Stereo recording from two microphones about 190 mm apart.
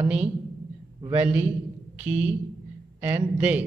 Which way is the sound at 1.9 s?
10° right (ahead or behind).